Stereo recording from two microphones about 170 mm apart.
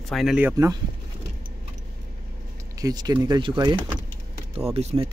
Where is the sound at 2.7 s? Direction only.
20° right (ahead or behind).